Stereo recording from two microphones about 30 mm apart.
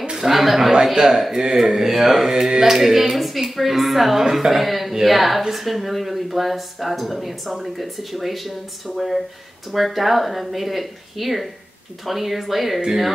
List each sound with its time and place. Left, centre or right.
0.1 s a woman's voice: centre